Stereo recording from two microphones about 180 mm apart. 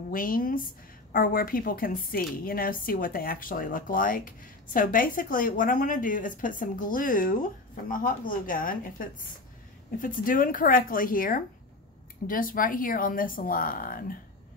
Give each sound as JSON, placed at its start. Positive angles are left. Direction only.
{"t": 0.1, "sound": "a woman's voice", "side_deg": 50}